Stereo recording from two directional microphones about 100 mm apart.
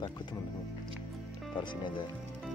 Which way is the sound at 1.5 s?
50° left (ahead or behind).